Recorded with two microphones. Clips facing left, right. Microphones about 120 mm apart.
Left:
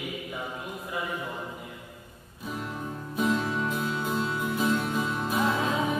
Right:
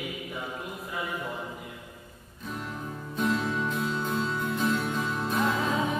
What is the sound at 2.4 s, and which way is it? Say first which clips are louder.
Music: left 2 dB; centre (ahead or behind).